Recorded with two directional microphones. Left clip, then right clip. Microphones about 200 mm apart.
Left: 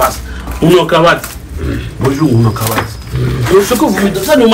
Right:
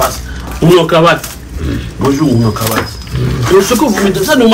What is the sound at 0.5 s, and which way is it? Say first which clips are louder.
Speech: right 1 dB; 5° right (ahead or behind).